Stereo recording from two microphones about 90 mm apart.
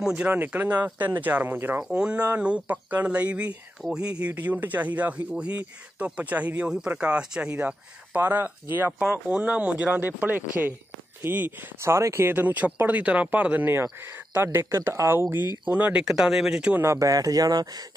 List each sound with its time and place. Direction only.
0.0 s speech: 10° right (ahead or behind)
1.8 s speech: 10° right (ahead or behind)
3.8 s speech: centre (ahead or behind)
4.2 s speech: 20° right (ahead or behind)
11.8 s speech: 30° right (ahead or behind)
15.7 s speech: 15° right (ahead or behind)
16.7 s speech: 30° right (ahead or behind)